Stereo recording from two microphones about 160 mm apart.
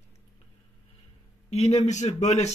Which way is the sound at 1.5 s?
45° left (ahead or behind).